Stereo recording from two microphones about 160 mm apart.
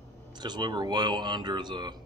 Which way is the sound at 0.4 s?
25° right (ahead or behind).